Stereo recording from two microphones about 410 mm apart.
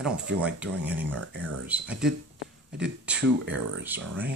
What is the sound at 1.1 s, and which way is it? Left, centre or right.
Speech, right.